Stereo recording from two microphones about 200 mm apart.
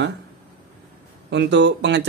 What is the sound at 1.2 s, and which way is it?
Speech, 60° right (ahead or behind).